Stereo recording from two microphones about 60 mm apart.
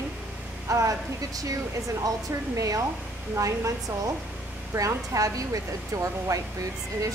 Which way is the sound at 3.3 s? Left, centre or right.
Right.